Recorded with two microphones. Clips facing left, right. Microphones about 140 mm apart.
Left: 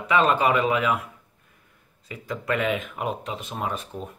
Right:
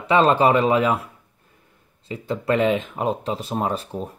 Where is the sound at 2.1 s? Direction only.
30° right (ahead or behind).